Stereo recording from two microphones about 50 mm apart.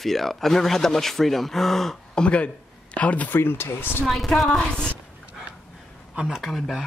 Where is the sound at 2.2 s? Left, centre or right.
Left.